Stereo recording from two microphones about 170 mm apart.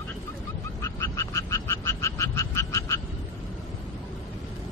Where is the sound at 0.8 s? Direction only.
15° left (ahead or behind).